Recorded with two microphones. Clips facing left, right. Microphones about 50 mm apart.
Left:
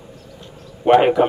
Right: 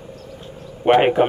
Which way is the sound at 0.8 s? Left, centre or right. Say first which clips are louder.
Left 1 dB; right.